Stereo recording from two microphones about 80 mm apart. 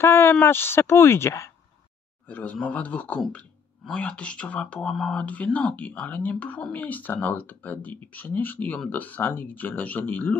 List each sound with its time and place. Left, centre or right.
0.0 s speech: left
2.2 s a man's voice: left
5.2 s speech: centre